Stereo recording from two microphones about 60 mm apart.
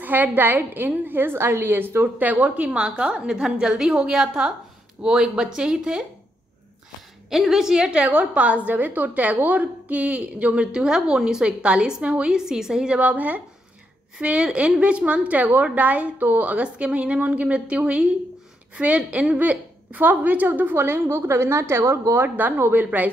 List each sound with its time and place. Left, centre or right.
0.0 s a woman's voice: right; by 6.0 s centre
7.2 s a woman's voice: centre
8.0 s a woman's voice: right
20.7 s a woman's voice: right
22.1 s a woman's voice: right